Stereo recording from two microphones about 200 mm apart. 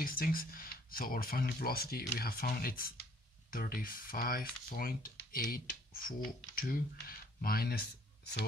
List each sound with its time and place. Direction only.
0.0 s speech: 45° left (ahead or behind)